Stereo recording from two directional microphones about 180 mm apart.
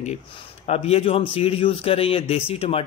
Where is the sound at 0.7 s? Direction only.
35° left (ahead or behind).